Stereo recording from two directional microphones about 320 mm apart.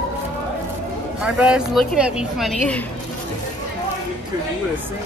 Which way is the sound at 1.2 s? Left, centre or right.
Centre.